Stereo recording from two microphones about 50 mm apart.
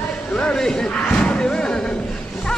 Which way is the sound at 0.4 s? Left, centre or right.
Centre.